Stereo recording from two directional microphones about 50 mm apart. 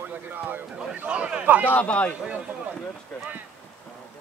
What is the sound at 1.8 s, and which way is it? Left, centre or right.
Speech, left.